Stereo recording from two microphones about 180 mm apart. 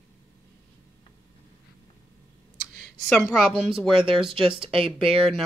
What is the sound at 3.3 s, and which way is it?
Speech, centre (ahead or behind).